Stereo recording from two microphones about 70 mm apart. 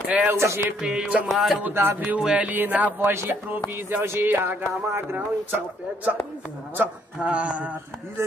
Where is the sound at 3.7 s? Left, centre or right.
Right.